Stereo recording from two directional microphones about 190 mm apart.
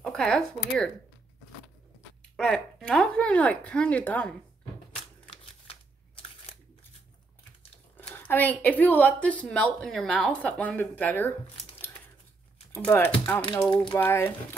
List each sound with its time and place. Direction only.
0.0 s speech: 5° left (ahead or behind)
2.3 s speech: 5° left (ahead or behind)
5.2 s a sound: 30° left (ahead or behind)
8.1 s speech: 10° left (ahead or behind)
12.7 s speech: 10° left (ahead or behind)